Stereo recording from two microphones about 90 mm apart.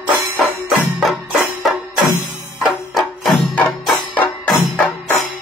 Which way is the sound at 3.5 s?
15° left (ahead or behind).